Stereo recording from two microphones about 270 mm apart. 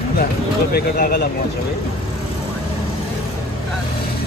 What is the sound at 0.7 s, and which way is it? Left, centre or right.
Speech, left.